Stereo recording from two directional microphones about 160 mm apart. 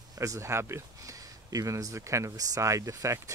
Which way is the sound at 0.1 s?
20° right (ahead or behind).